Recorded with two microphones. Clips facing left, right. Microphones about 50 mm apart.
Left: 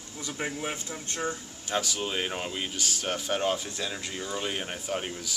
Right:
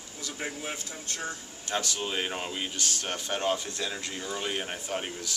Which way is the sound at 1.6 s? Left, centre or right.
Centre.